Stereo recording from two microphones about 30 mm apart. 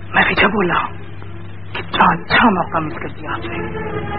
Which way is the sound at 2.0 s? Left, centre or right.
Centre.